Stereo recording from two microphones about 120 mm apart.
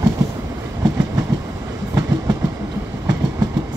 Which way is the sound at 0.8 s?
30° right (ahead or behind).